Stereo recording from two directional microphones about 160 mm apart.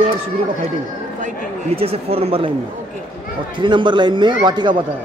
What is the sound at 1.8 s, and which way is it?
Speech, 35° right (ahead or behind).